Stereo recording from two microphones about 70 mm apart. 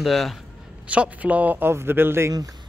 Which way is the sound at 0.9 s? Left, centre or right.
Centre.